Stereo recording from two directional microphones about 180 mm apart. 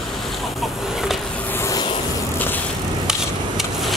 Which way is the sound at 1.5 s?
15° left (ahead or behind).